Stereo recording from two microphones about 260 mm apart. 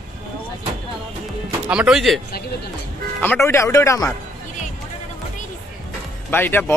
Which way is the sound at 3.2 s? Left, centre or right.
Centre.